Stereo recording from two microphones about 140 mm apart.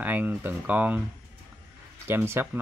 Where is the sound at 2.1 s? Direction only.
15° right (ahead or behind).